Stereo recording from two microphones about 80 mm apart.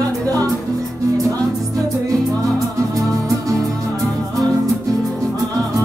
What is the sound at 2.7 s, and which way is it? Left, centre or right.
Music, right.